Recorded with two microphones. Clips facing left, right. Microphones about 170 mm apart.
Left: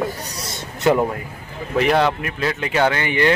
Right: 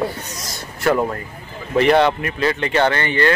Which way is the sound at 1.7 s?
Centre (ahead or behind).